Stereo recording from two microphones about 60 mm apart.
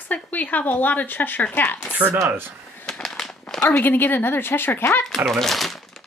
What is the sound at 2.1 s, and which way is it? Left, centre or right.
Speech, right.